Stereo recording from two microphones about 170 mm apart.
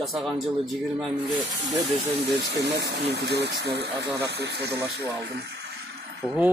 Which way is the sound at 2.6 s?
90° right.